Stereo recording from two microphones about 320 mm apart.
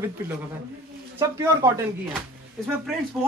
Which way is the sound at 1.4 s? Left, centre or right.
Centre.